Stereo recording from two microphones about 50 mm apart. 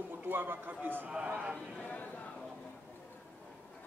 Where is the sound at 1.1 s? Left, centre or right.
Right.